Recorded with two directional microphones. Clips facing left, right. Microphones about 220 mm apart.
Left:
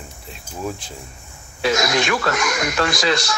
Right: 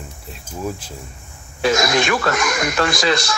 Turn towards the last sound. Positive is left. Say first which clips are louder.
# right 1 dB
turn(degrees=-50)  # may be behind; listen again after turning